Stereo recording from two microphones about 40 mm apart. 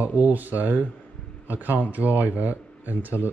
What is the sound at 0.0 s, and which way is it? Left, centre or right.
Speech, right.